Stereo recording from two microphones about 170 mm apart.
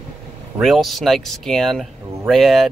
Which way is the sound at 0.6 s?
Centre (ahead or behind).